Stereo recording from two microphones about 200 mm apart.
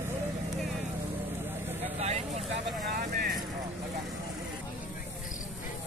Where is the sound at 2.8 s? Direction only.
50° right (ahead or behind).